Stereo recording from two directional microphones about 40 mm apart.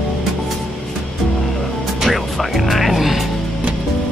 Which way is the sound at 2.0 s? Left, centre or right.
Centre.